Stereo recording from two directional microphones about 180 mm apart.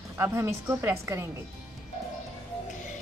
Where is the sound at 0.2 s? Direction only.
15° right (ahead or behind).